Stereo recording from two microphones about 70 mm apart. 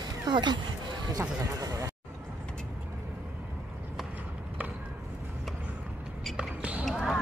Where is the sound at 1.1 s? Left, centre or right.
Right.